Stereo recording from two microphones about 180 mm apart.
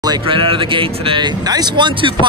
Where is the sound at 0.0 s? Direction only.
25° right (ahead or behind).